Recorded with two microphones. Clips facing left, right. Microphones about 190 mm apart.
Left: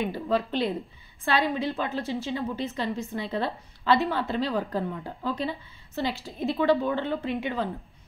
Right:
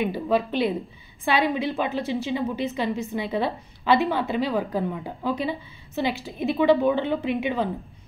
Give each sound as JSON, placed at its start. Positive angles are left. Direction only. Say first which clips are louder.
{"t": 0.0, "sound": "a woman's voice", "louder": "right 3 dB", "side_deg": -15}